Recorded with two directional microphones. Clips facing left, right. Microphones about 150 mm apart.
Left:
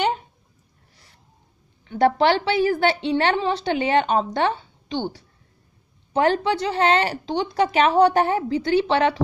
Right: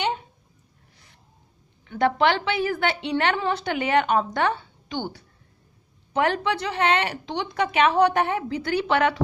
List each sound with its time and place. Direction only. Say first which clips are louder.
1.9 s a woman's voice: left 3 dB; 35° left (ahead or behind)